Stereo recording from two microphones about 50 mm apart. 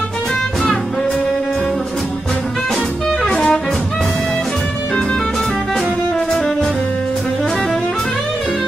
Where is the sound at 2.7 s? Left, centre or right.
Centre.